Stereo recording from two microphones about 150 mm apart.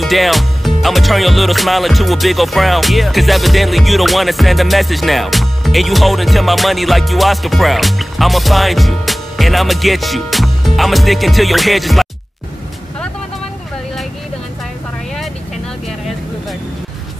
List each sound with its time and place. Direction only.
0.0 s music: centre (ahead or behind)